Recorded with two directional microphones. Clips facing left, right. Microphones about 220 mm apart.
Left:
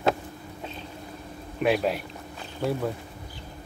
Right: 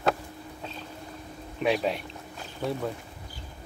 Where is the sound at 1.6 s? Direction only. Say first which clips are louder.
Left 2 dB; 5° left (ahead or behind).